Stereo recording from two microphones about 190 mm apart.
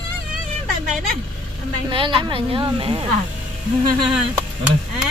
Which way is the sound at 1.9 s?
25° right (ahead or behind).